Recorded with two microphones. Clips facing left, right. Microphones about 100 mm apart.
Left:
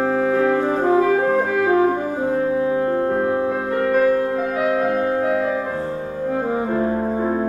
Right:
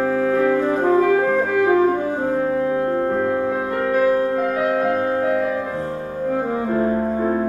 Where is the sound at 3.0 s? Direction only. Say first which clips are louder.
Even; 15° left (ahead or behind).